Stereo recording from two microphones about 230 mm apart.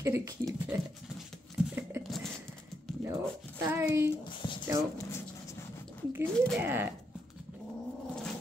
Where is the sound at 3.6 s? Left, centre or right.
Centre.